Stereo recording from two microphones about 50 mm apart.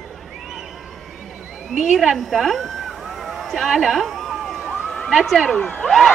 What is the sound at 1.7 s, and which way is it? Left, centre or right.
Speech, centre.